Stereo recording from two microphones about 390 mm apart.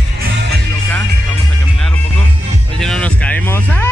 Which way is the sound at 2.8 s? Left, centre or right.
Centre.